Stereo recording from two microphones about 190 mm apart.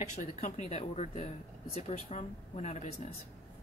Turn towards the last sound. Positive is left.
turn(degrees=35)  # may be behind; listen again after turning